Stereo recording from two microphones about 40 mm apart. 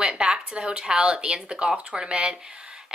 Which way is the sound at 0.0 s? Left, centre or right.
Centre.